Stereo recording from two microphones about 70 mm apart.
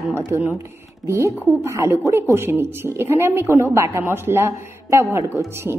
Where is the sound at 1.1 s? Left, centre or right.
Right.